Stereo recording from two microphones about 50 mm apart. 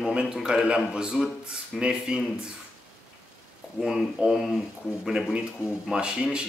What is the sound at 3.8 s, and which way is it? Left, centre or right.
Speech, centre.